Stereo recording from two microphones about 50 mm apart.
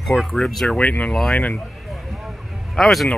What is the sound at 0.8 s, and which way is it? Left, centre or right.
Speech, left.